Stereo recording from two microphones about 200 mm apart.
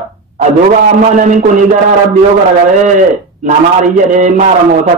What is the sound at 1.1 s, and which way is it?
Speech, 40° right (ahead or behind).